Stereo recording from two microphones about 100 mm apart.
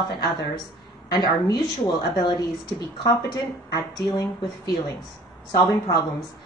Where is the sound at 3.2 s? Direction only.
35° left (ahead or behind).